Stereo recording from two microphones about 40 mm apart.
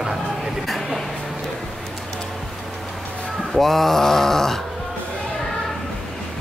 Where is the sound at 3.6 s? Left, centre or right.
Centre.